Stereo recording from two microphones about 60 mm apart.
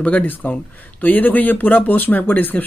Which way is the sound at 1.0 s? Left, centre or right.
Left.